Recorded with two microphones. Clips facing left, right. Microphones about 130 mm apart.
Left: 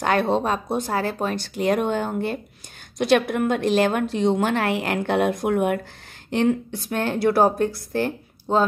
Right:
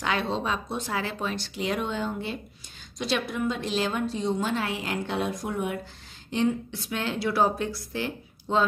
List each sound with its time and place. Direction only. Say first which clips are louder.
0.0 s a woman's voice: left 7 dB; 50° left (ahead or behind)